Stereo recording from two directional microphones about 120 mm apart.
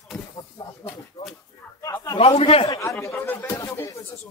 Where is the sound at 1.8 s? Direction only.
25° left (ahead or behind).